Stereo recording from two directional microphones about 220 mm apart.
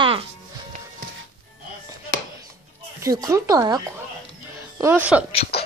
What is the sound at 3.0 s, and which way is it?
Speech, 15° right (ahead or behind).